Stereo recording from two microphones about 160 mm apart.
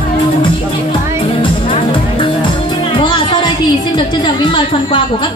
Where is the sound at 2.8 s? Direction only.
30° left (ahead or behind).